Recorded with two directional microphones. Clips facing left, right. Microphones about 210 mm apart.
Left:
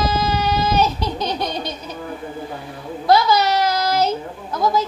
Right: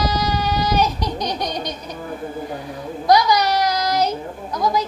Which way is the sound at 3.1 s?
15° right (ahead or behind).